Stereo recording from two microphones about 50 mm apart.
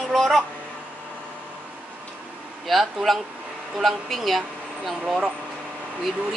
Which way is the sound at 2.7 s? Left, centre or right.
Centre.